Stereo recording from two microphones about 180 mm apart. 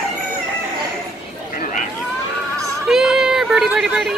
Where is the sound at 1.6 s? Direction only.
50° left (ahead or behind).